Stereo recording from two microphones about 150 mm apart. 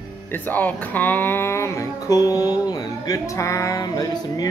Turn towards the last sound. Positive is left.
turn(degrees=25)  # may be behind; listen again after turning